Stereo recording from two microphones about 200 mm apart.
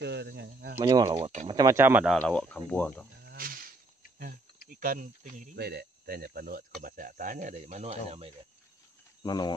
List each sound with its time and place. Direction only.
0.0 s speech: 55° right (ahead or behind)
0.7 s speech: 25° right (ahead or behind); by 2.1 s 10° right (ahead or behind)
2.1 s speech: 5° left (ahead or behind)
3.3 s insect: 45° right (ahead or behind)
4.6 s speech: 45° right (ahead or behind)
5.6 s speech: 55° right (ahead or behind); by 8.3 s 30° right (ahead or behind)
9.2 s speech: 20° left (ahead or behind)